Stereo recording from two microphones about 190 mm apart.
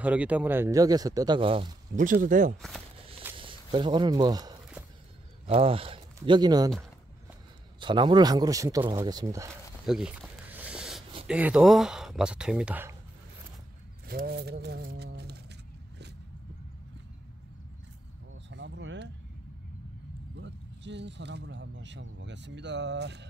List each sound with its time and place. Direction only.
0.0 s speech: 5° right (ahead or behind); by 1.8 s 25° right (ahead or behind)
2.2 s speech: 45° right (ahead or behind)
3.3 s speech: 25° right (ahead or behind)
7.8 s speech: 25° right (ahead or behind)
9.8 s a sound: 5° right (ahead or behind)
11.2 s speech: 5° right (ahead or behind)
14.0 s speech: 55° right (ahead or behind)
18.5 s a sound: 75° right (ahead or behind)
20.3 s speech: 65° right (ahead or behind)